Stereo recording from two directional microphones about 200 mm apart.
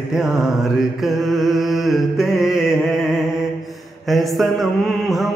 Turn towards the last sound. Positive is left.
turn(degrees=0)  # may be behind; listen again after turning